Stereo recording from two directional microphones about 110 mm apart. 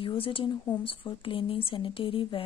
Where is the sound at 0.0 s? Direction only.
55° left (ahead or behind).